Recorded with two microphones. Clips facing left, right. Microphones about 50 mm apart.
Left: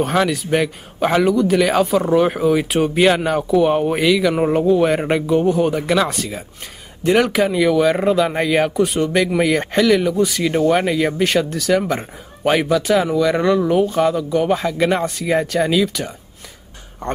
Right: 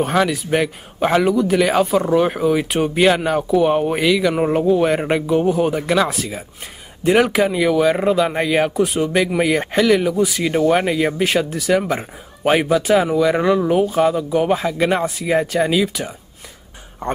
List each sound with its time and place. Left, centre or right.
0.0 s speech: centre
17.0 s speech: centre